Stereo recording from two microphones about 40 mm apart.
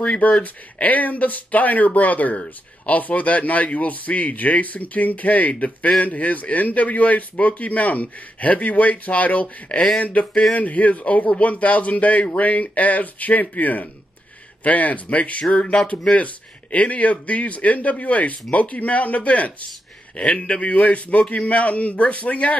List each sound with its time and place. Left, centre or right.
0.4 s speech: left
16.7 s speech: left